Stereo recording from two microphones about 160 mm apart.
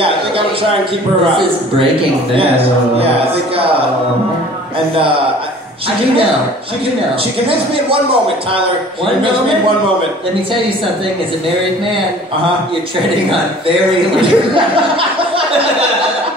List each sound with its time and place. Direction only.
1.3 s speech: 35° right (ahead or behind)
7.4 s speech: 35° right (ahead or behind)
14.2 s speech: 35° right (ahead or behind)